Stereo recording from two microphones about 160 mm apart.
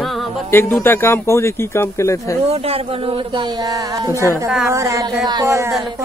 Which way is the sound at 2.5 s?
40° right (ahead or behind).